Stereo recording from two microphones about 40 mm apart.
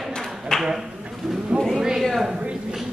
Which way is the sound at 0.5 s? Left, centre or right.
Centre.